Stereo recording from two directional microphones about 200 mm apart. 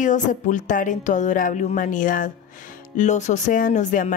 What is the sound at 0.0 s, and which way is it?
A woman's voice, 40° left (ahead or behind).